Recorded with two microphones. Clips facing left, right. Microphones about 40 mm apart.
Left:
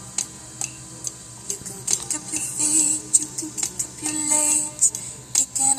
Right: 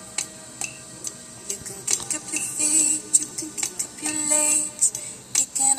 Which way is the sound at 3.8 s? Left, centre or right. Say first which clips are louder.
Left 2 dB; right.